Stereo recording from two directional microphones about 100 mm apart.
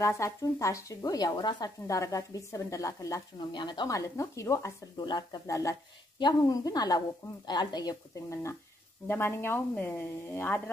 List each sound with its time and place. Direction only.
0.0 s speech: 30° left (ahead or behind); by 1.7 s 45° left (ahead or behind)
1.9 s speech: 35° left (ahead or behind)
3.3 s speech: 50° left (ahead or behind)
3.9 s speech: 30° left (ahead or behind)
4.9 s speech: 50° left (ahead or behind)
5.5 s speech: 30° left (ahead or behind)
6.1 s speech: 45° left (ahead or behind); by 10.6 s 20° left (ahead or behind)